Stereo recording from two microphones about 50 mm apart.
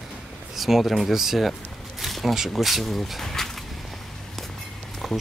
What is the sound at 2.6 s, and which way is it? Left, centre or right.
Speech, centre.